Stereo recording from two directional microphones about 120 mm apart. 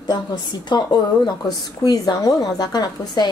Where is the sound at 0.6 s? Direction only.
35° left (ahead or behind).